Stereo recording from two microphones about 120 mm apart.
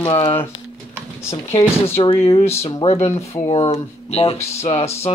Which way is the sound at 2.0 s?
45° left (ahead or behind).